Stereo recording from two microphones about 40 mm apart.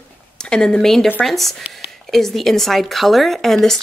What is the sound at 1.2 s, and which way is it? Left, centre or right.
Speech, centre.